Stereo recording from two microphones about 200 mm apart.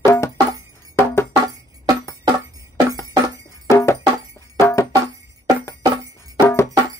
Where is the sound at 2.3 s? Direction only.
20° right (ahead or behind).